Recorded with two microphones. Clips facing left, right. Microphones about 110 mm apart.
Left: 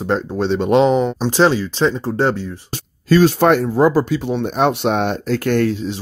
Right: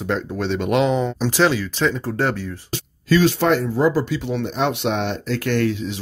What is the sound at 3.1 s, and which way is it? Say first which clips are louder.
Speech: left 4 dB; 40° left (ahead or behind).